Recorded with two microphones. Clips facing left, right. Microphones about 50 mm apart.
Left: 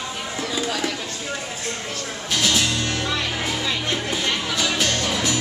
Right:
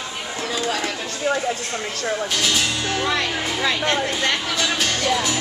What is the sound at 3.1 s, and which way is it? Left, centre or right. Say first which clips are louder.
Music: right 2 dB; right.